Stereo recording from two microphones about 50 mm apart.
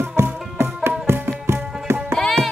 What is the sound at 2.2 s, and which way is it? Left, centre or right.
Music, centre.